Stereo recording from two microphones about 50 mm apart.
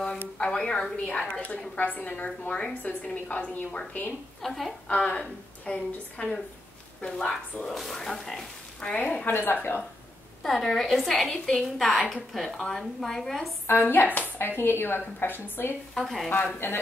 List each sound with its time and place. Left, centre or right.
0.4 s a woman's voice: centre
1.8 s a woman's voice: left
4.4 s a woman's voice: centre
4.8 s a woman's voice: left
7.6 s a woman's voice: centre
8.8 s a woman's voice: left
9.2 s a woman's voice: left
10.4 s a woman's voice: centre
13.7 s a woman's voice: left
15.9 s a woman's voice: centre
16.5 s a woman's voice: left